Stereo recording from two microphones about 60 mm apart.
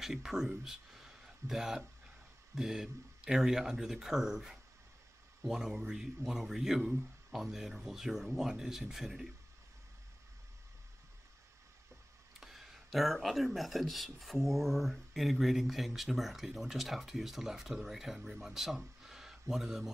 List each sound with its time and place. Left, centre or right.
0.0 s speech: centre
7.2 s speech: centre
12.4 s speech: centre